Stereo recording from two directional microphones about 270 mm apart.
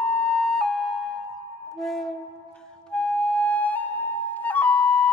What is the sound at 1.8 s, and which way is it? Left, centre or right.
Music, centre.